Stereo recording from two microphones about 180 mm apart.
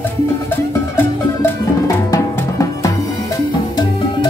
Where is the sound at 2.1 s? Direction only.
20° left (ahead or behind).